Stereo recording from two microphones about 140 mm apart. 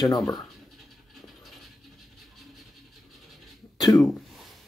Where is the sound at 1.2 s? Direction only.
Centre (ahead or behind).